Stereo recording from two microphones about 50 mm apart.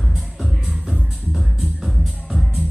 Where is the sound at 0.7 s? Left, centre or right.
Centre.